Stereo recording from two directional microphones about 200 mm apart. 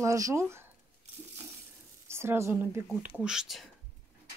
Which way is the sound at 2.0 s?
15° right (ahead or behind).